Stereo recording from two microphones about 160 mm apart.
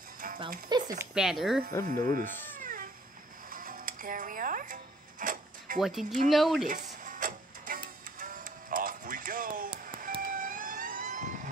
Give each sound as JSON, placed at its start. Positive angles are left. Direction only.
{"t": 0.2, "sound": "music", "side_deg": -60}
{"t": 0.7, "sound": "speech", "side_deg": -25}
{"t": 1.1, "sound": "speech", "side_deg": 0}
{"t": 2.0, "sound": "cat", "side_deg": -55}
{"t": 3.4, "sound": "music", "side_deg": -65}
{"t": 5.2, "sound": "filing", "side_deg": -55}
{"t": 5.8, "sound": "speech", "side_deg": 0}
{"t": 6.7, "sound": "music", "side_deg": -55}
{"t": 10.2, "sound": "vehicle", "side_deg": -60}